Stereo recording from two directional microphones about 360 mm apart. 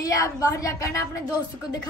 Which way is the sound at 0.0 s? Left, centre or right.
Centre.